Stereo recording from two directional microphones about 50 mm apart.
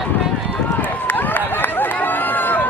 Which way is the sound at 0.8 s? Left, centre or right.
Left.